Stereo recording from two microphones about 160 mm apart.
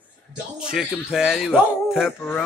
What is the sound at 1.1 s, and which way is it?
Speech, 5° right (ahead or behind).